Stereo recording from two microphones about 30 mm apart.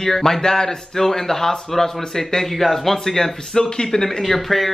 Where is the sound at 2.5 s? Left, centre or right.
Centre.